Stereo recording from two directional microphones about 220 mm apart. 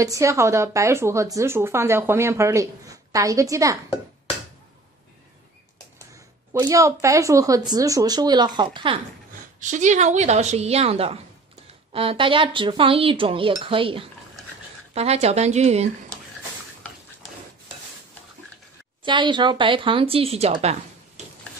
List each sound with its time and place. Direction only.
0.0 s a woman's voice: 15° right (ahead or behind)
6.1 s a woman's voice: 15° right (ahead or behind)
9.6 s speech: 35° right (ahead or behind)
11.9 s cutlery: 25° right (ahead or behind)
19.0 s cutlery: 20° right (ahead or behind)